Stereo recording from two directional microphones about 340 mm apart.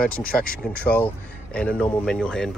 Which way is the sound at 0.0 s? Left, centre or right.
Centre.